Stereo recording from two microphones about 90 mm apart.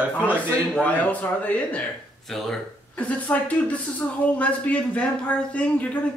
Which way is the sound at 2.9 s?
15° left (ahead or behind).